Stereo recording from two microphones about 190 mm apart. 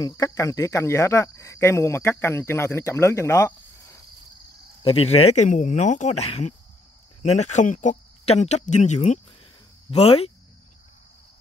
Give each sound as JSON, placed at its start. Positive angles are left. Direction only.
{"t": 0.0, "sound": "cricket", "side_deg": 15}
{"t": 4.8, "sound": "speech", "side_deg": 30}